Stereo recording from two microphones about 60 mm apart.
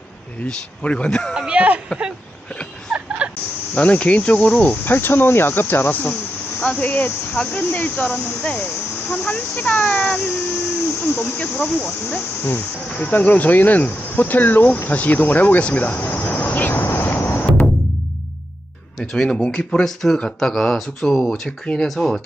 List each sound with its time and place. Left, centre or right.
0.5 s speech: centre
1.5 s speech: centre
3.2 s fowl: centre
3.7 s speech: left
4.8 s speech: left
8.4 s speech: left
11.0 s speech: left
11.3 s speech: left
13.0 s speech: left
18.9 s speech: centre